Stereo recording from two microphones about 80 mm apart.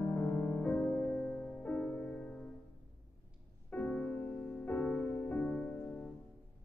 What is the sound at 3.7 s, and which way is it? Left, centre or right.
Music, left.